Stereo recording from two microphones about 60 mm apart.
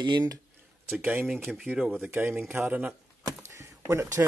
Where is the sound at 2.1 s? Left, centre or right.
Right.